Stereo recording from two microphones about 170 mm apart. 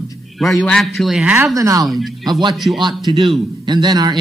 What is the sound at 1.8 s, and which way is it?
Speech, centre (ahead or behind).